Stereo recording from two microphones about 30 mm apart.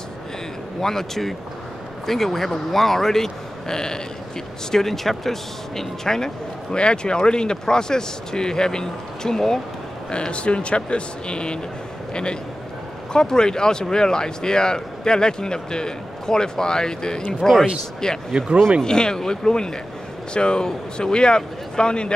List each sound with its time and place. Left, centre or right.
0.7 s speech: centre
4.6 s speech: centre
6.8 s a man's voice: left
10.1 s a man's voice: left; by 17.6 s centre
18.0 s a man's voice: left